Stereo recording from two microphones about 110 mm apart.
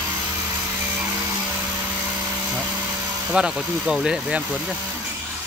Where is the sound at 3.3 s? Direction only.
5° right (ahead or behind).